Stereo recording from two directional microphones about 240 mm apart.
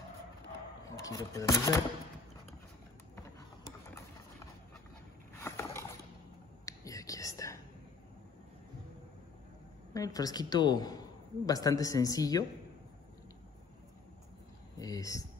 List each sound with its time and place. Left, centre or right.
0.8 s speech: centre
5.4 s rowboat: centre
6.6 s whispering: centre
9.9 s a woman's voice: centre
14.8 s a sound: centre